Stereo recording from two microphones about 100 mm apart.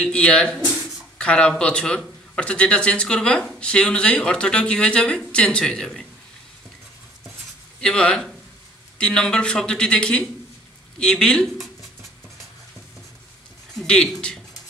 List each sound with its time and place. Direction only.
0.0 s a man's voice: 10° left (ahead or behind)
7.8 s a man's voice: 5° left (ahead or behind)
11.0 s a sound: 10° left (ahead or behind)
13.7 s speech: 5° left (ahead or behind)